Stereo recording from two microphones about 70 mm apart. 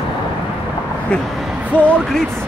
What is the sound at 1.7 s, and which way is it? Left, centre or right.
Speech, left.